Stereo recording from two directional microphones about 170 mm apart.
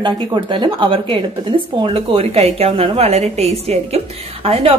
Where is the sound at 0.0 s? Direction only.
30° right (ahead or behind).